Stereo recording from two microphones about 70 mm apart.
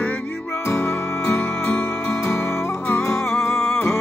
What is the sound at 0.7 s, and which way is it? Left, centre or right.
Music, left.